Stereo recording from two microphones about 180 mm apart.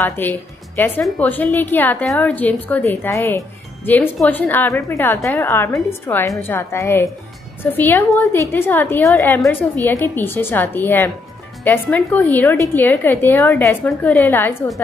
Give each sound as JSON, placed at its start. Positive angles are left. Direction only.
{"t": 0.0, "sound": "a woman's voice", "side_deg": 10}